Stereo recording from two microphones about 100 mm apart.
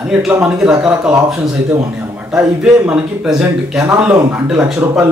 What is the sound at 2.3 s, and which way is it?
Speech, 5° right (ahead or behind).